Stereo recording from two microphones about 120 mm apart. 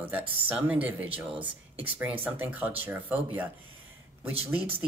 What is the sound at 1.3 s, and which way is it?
Speech, 50° right (ahead or behind).